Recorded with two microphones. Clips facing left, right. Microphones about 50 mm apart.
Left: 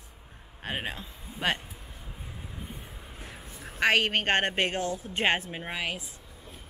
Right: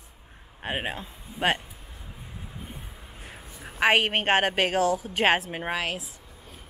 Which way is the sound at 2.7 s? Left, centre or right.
Centre.